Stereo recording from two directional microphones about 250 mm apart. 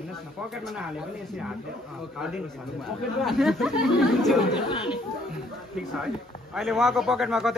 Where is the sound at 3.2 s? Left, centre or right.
Centre.